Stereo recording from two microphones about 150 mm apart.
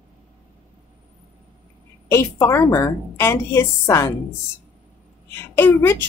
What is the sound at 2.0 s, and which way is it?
A woman's voice, 20° left (ahead or behind).